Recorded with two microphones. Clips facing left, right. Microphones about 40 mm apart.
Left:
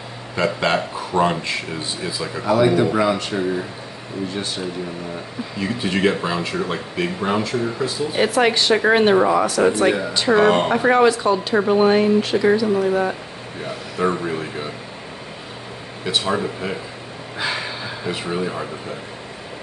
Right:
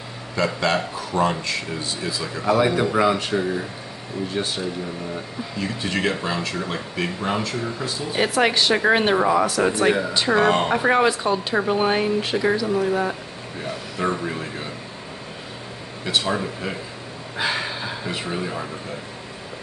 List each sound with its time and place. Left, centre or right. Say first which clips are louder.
0.4 s speech: left 2 dB; centre
2.4 s speech: left 3 dB; centre
5.6 s speech: left 4 dB; centre
16.1 s speech: left 2 dB; centre
17.4 s a sound: even; centre